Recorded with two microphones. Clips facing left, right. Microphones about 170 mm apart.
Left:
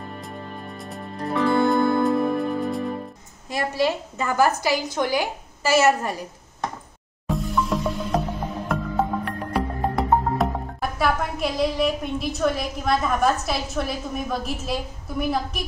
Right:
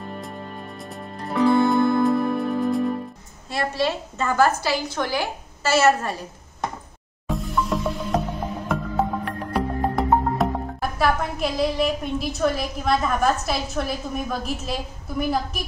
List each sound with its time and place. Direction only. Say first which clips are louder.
0.8 s music: left 4 dB; centre (ahead or behind)
3.4 s a woman's voice: left 1 dB; 15° left (ahead or behind)
7.2 s music: left 1 dB; centre (ahead or behind)
9.2 s speech: even; centre (ahead or behind)